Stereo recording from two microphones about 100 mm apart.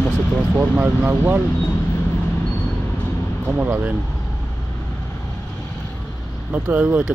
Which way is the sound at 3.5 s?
15° right (ahead or behind).